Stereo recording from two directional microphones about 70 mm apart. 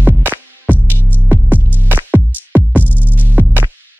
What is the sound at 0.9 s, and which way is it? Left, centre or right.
Music, left.